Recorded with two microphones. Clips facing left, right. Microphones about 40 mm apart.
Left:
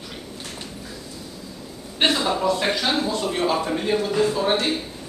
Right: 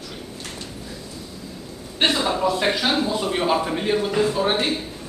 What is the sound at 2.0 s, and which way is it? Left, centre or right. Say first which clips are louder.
Speech: even; centre.